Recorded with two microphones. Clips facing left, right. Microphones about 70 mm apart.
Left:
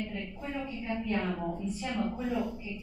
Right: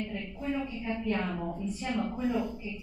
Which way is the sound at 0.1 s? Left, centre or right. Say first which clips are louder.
Right 3 dB; centre.